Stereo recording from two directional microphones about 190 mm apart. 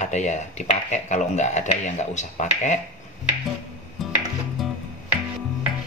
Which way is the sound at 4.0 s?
Centre (ahead or behind).